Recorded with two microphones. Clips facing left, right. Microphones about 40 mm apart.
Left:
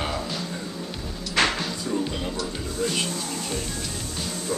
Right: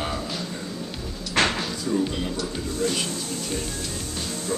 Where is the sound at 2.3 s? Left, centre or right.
Centre.